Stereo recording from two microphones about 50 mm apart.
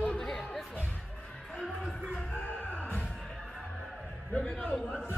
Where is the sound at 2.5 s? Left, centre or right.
Left.